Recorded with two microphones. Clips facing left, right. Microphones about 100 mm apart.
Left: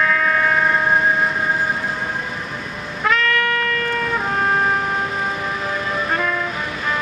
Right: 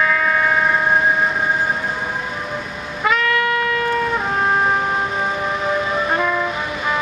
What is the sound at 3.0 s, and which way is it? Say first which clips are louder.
Music: right 1 dB; 5° right (ahead or behind).